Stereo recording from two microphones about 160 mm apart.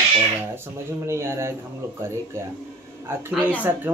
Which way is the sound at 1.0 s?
15° right (ahead or behind).